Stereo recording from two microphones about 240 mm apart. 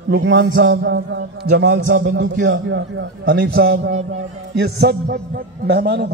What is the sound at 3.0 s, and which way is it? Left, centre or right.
A man's voice, right.